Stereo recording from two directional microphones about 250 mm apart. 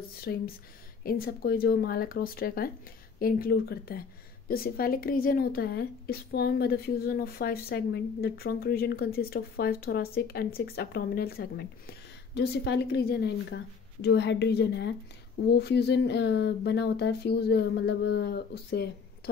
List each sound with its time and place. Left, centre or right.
0.3 s a woman's voice: left